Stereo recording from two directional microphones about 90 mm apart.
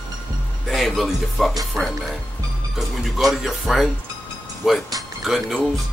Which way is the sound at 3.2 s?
Centre (ahead or behind).